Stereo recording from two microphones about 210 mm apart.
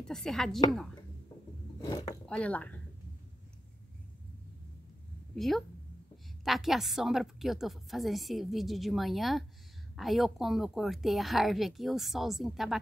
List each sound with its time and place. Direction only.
0.0 s a woman's voice: centre (ahead or behind)
1.8 s speech: 15° left (ahead or behind)
2.2 s speech: 5° left (ahead or behind)
5.3 s a woman's voice: centre (ahead or behind)